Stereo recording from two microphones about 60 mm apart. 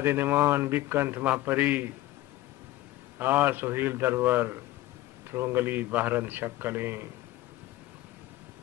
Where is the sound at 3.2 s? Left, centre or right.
Right.